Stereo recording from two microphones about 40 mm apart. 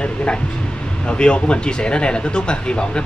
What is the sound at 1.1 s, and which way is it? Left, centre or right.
Speech, left.